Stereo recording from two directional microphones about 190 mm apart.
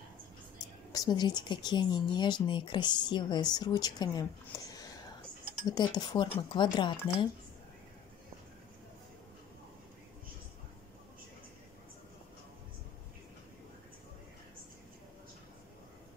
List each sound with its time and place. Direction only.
0.9 s speech: 20° left (ahead or behind)